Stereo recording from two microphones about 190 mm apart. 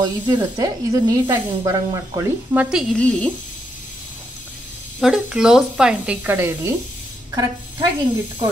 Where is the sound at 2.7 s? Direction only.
5° left (ahead or behind).